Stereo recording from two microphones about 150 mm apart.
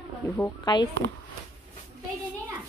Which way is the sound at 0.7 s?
30° left (ahead or behind).